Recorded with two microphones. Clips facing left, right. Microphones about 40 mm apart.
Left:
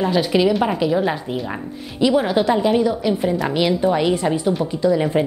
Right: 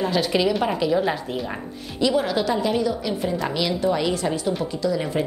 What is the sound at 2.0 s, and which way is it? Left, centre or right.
A woman's voice, centre.